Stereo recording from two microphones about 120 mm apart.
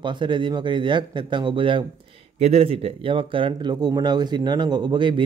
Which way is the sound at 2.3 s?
60° right (ahead or behind).